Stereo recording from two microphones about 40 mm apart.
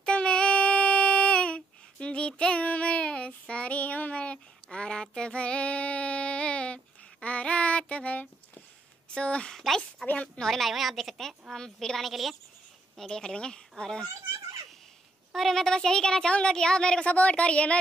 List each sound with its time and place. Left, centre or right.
0.0 s child singing: left
4.2 s child singing: left
9.1 s speech: left
9.5 s a woman's voice: centre
10.2 s speech: centre
10.5 s a woman's voice: centre
12.0 s a woman's voice: centre
13.1 s speech: left
15.3 s speech: centre
17.0 s speech: left